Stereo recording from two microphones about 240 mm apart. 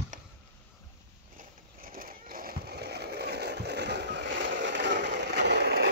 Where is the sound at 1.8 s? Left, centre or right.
Right.